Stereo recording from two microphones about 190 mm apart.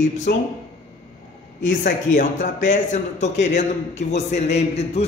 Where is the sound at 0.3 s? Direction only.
55° left (ahead or behind).